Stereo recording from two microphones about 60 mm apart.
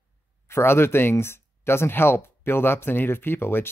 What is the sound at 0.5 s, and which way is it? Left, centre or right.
Speech, left.